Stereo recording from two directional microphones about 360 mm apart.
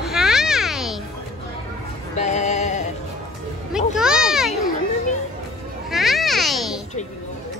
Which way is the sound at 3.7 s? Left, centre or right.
Centre.